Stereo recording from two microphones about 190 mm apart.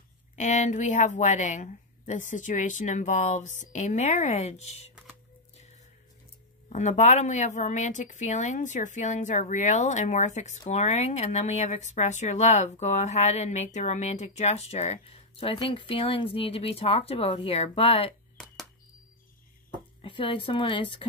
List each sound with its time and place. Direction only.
0.4 s speech: 40° left (ahead or behind)
6.7 s speech: 40° left (ahead or behind)
20.0 s speech: 25° left (ahead or behind)